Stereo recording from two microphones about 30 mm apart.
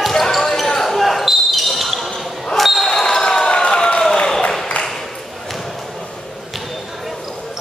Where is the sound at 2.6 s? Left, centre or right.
Centre.